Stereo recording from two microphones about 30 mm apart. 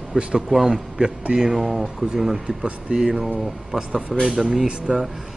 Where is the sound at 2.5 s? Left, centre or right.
Right.